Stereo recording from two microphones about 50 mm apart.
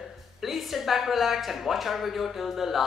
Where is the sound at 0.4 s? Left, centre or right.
Centre.